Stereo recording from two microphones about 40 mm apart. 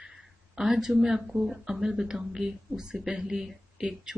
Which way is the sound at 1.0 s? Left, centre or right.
Centre.